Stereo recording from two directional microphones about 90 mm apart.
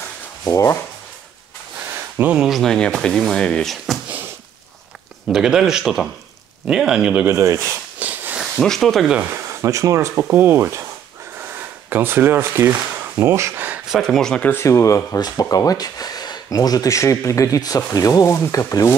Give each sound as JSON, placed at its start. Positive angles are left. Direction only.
{"t": 0.5, "sound": "speech", "side_deg": 35}
{"t": 2.3, "sound": "speech", "side_deg": -5}
{"t": 2.6, "sound": "speech", "side_deg": 5}
{"t": 5.3, "sound": "speech", "side_deg": -5}
{"t": 7.2, "sound": "speech", "side_deg": -30}
{"t": 8.0, "sound": "a sound", "side_deg": -20}
{"t": 8.5, "sound": "speech", "side_deg": 5}
{"t": 9.3, "sound": "speech", "side_deg": -35}
{"t": 13.8, "sound": "speech", "side_deg": 0}
{"t": 14.4, "sound": "speech", "side_deg": 30}
{"t": 15.1, "sound": "speech", "side_deg": 45}